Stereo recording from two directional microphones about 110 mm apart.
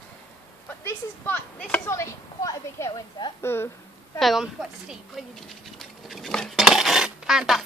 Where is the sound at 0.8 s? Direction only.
15° left (ahead or behind).